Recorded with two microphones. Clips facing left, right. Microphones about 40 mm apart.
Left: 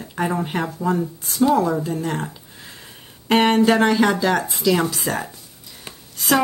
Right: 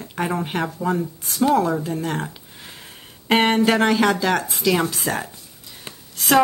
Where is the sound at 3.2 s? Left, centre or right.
Centre.